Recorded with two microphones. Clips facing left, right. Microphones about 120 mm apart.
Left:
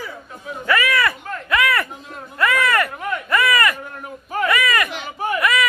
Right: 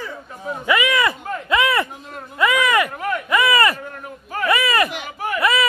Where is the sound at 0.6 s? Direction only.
15° right (ahead or behind).